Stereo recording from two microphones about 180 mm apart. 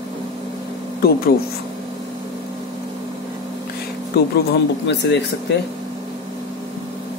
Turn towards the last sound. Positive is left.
turn(degrees=80)